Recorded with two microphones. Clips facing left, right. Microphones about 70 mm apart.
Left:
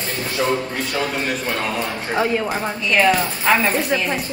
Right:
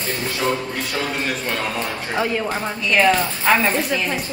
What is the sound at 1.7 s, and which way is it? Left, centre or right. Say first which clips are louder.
Speech: left 2 dB; left.